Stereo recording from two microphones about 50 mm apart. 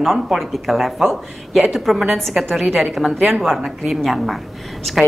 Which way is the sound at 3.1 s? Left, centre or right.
Right.